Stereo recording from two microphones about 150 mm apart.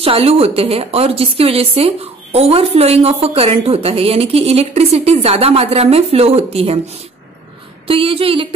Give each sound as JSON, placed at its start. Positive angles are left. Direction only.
{"t": 0.0, "sound": "a woman's voice", "side_deg": -40}
{"t": 7.8, "sound": "a woman's voice", "side_deg": -40}